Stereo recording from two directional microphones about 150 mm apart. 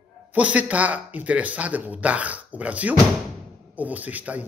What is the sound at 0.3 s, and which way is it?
Speech, 10° right (ahead or behind).